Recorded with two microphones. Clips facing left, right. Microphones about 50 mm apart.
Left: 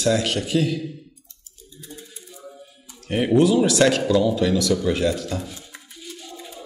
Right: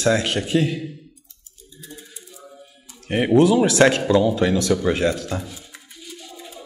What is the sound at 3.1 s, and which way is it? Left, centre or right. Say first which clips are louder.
Speech: right 2 dB; right.